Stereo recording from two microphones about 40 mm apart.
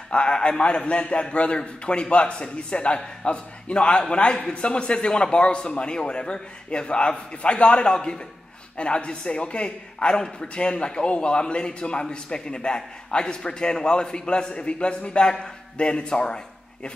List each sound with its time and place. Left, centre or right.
0.1 s a man's voice: left